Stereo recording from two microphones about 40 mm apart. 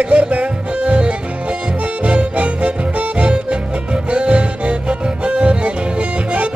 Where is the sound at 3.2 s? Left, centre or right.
Right.